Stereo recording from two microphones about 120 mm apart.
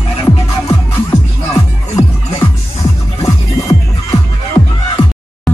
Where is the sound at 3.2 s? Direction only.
30° left (ahead or behind).